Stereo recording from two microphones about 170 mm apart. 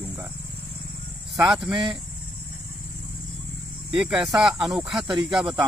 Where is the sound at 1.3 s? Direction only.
Centre (ahead or behind).